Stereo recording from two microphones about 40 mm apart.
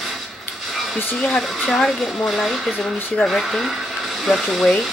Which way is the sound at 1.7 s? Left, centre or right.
Centre.